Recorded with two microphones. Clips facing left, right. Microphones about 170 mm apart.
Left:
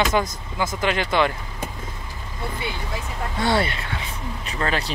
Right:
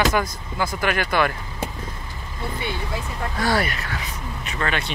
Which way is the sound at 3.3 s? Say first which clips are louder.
Left 1 dB; 25° left (ahead or behind).